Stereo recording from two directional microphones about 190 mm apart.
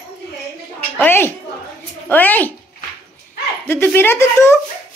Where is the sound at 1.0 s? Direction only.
10° left (ahead or behind).